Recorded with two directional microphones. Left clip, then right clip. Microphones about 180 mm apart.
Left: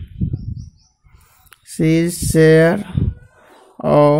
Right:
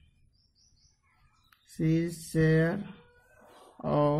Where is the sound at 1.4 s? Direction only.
45° left (ahead or behind).